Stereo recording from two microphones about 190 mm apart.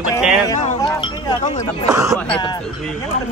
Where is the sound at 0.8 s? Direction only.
25° left (ahead or behind).